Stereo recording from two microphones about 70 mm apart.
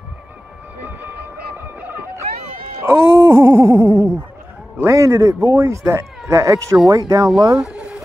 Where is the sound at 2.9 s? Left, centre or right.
Right.